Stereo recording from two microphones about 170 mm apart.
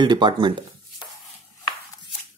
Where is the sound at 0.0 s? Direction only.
25° right (ahead or behind).